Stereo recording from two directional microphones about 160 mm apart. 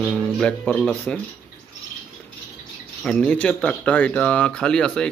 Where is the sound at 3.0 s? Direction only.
5° left (ahead or behind).